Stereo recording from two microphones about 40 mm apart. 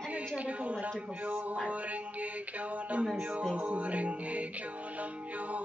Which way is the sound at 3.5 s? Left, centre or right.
Right.